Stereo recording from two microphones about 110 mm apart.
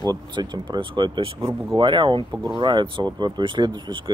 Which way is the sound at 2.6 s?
45° right (ahead or behind).